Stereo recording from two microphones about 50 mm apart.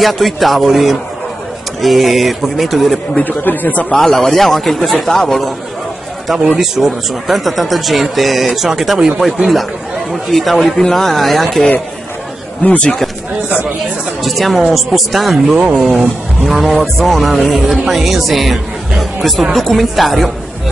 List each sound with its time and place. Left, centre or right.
0.0 s speech: centre
3.2 s speech: left
3.9 s speech: centre
6.6 s speech: centre
12.6 s speech: left
14.2 s speech: centre